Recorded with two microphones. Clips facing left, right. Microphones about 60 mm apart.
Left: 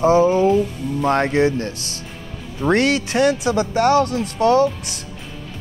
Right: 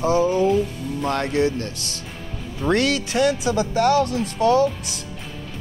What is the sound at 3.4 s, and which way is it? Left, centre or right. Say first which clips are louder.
Speech: left 2 dB; left.